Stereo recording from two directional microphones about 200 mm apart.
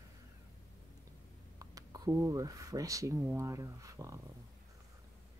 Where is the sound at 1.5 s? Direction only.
20° right (ahead or behind).